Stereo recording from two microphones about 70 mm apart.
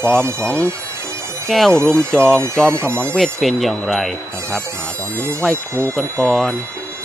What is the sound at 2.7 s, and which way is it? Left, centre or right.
Speech, right.